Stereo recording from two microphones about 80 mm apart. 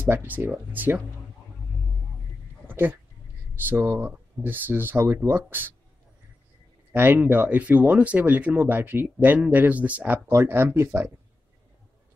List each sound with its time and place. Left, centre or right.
0.0 s speech: right
2.7 s speech: right
6.9 s speech: right